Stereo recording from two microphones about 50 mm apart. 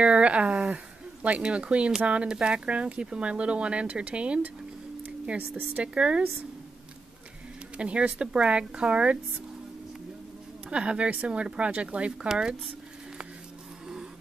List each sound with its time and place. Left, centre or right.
0.0 s speech: right
5.0 s a sound: right
5.9 s speech: centre
7.7 s speech: right
10.7 s speech: right